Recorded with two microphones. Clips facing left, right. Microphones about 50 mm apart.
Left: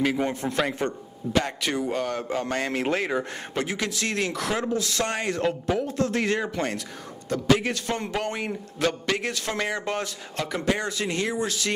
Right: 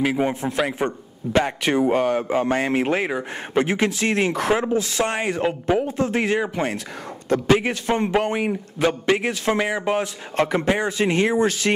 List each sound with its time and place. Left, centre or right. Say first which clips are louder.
0.0 s speech: right 3 dB; centre
0.5 s a man's voice: right 3 dB; centre
1.3 s a man's voice: right 6 dB; right
2.0 s speech: right 7 dB; centre
3.5 s a man's voice: right 8 dB; right
7.2 s a man's voice: right 4 dB; right
7.5 s a man's voice: right 4 dB; right
10.3 s speech: right 6 dB; right